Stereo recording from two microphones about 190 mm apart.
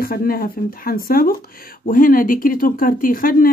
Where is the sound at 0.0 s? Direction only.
50° left (ahead or behind).